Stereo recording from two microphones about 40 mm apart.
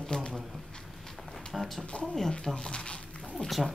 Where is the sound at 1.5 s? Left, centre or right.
Centre.